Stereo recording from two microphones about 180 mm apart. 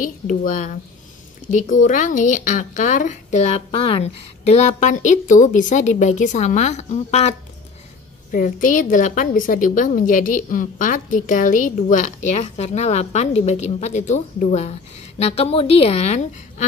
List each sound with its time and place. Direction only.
0.0 s a woman's voice: 50° left (ahead or behind)
8.3 s a woman's voice: 50° left (ahead or behind)